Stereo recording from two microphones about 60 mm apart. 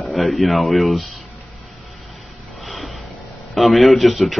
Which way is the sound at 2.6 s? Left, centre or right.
Centre.